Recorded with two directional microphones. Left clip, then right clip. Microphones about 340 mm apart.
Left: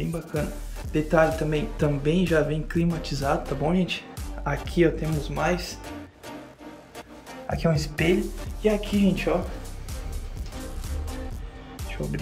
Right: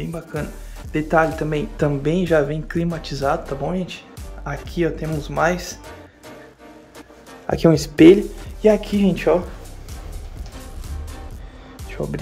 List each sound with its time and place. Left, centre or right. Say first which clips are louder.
0.0 s speech: right 2 dB; centre
5.2 s speech: right 7 dB; centre
7.5 s speech: right 11 dB; right
12.0 s speech: right 7 dB; centre